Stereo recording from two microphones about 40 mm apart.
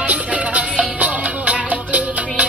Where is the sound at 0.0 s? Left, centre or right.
Right.